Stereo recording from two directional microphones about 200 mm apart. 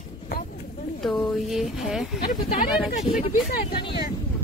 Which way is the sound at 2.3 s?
45° left (ahead or behind).